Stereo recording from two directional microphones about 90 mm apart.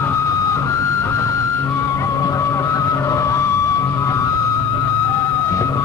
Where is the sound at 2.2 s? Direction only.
35° left (ahead or behind).